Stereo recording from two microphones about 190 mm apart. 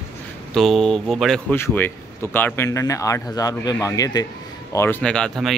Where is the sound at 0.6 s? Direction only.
Centre (ahead or behind).